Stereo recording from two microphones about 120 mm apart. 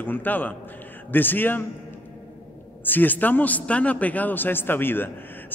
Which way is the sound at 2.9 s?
15° left (ahead or behind).